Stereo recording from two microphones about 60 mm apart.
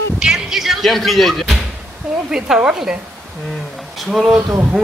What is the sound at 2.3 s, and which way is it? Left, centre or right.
Speech, centre.